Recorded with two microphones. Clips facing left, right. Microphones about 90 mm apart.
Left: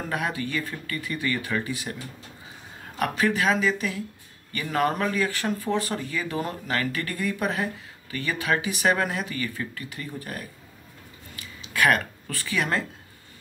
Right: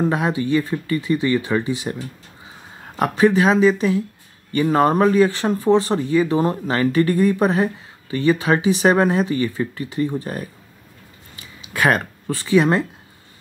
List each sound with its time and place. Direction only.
0.0 s speech: 25° right (ahead or behind)
3.0 s speech: 25° right (ahead or behind)
11.3 s a sound: 25° right (ahead or behind)